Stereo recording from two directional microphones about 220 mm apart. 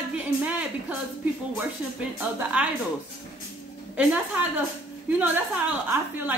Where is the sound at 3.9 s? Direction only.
5° right (ahead or behind).